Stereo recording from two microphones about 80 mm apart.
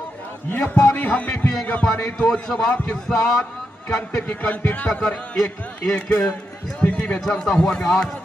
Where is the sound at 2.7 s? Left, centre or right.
Centre.